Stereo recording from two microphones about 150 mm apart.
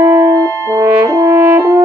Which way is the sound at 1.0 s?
25° right (ahead or behind).